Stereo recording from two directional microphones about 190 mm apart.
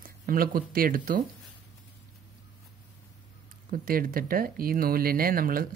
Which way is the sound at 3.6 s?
50° right (ahead or behind).